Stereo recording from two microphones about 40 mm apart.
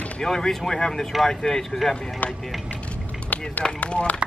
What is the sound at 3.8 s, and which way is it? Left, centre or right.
Speech, left.